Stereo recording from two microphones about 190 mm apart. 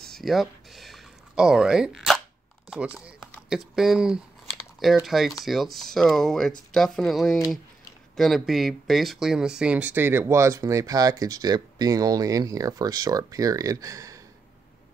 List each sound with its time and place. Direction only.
0.0 s speech: centre (ahead or behind); by 14.2 s 15° right (ahead or behind)